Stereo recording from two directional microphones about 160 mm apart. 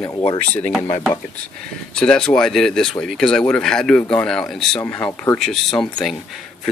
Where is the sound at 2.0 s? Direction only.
5° left (ahead or behind).